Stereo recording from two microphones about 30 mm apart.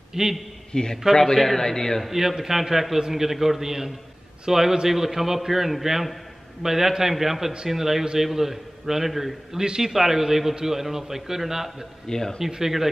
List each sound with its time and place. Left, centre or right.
0.1 s a man's voice: centre
0.7 s a man's voice: left
1.2 s a man's voice: centre
2.0 s a man's voice: centre
9.6 s a man's voice: centre
12.1 s speech: centre
12.4 s a man's voice: right